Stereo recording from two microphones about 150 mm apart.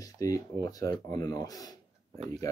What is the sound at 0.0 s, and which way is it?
Speech, 20° left (ahead or behind).